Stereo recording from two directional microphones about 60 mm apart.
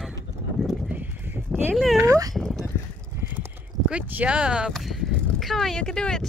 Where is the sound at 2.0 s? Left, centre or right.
Right.